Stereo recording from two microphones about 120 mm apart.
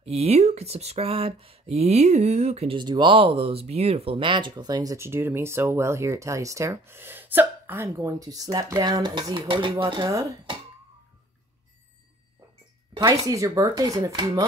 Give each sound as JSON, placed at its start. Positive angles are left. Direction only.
{"t": 0.0, "sound": "speech", "side_deg": -60}
{"t": 2.7, "sound": "speech", "side_deg": -40}
{"t": 4.9, "sound": "speech", "side_deg": -20}
{"t": 13.1, "sound": "speech", "side_deg": -30}